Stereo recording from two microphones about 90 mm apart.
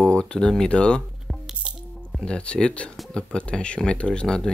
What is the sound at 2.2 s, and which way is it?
Speech, 10° left (ahead or behind).